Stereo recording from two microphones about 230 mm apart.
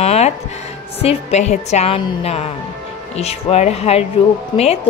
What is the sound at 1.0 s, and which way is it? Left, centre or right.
A woman's voice, left.